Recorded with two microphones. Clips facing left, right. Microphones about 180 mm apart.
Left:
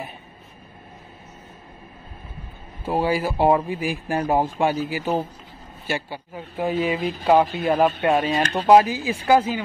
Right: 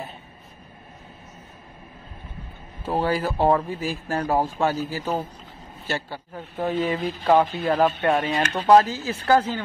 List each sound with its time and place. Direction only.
2.8 s speech: 10° left (ahead or behind)